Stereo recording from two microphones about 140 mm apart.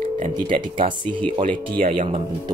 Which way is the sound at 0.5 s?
35° right (ahead or behind).